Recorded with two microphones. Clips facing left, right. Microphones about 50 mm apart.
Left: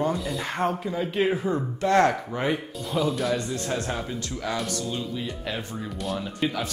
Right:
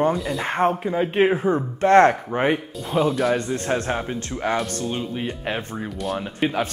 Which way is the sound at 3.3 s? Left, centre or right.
Right.